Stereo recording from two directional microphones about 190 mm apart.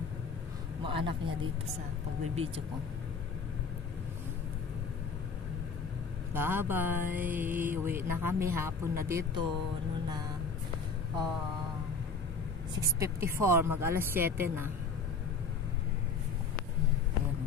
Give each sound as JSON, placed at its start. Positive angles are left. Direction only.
{"t": 0.8, "sound": "speech", "side_deg": -25}
{"t": 6.3, "sound": "speech", "side_deg": -10}
{"t": 13.0, "sound": "speech", "side_deg": -15}